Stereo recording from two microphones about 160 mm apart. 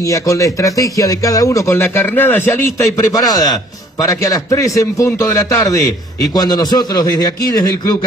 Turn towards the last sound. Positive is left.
turn(degrees=25)  # may be behind; listen again after turning